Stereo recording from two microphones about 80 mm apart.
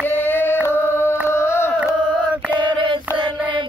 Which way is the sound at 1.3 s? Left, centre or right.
Left.